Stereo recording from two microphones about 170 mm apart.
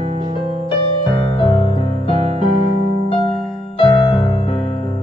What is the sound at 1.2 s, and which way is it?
Music, 30° left (ahead or behind).